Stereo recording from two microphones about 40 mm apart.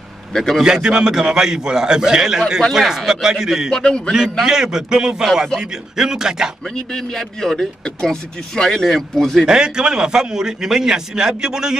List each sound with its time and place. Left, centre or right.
0.3 s a man's voice: centre
0.6 s a man's voice: centre
3.7 s speech: centre
4.1 s a man's voice: centre
6.9 s speech: centre
9.5 s a man's voice: centre